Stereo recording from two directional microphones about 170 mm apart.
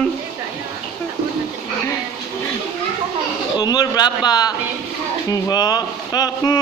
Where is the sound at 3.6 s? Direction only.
25° left (ahead or behind).